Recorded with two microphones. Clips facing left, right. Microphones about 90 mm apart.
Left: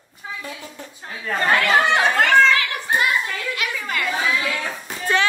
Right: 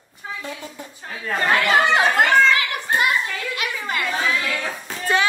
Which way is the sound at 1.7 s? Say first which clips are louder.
Right 1 dB; centre (ahead or behind).